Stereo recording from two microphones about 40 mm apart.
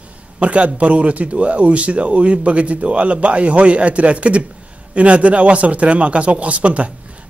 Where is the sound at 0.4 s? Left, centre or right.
Right.